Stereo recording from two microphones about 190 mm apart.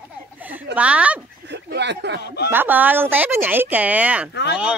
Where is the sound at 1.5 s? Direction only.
65° right (ahead or behind).